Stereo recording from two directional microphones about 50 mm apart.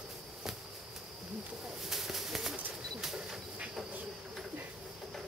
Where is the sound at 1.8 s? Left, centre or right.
Centre.